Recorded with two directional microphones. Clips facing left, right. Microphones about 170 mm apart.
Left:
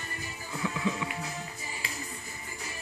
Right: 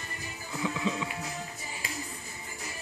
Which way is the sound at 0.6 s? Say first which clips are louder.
Right 1 dB; 15° right (ahead or behind).